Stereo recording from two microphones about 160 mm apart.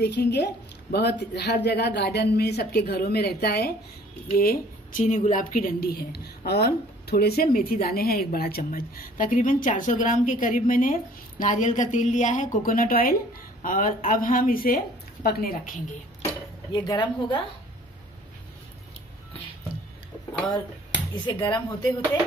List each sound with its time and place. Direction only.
0.0 s speech: 90° left
4.4 s a woman's voice: 60° left (ahead or behind)
15.2 s a woman's voice: 75° left (ahead or behind)
16.7 s a woman's voice: 25° left (ahead or behind)
21.3 s a woman's voice: 30° left (ahead or behind)